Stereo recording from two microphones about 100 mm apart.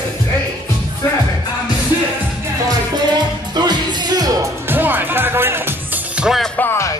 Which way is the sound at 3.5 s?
45° right (ahead or behind).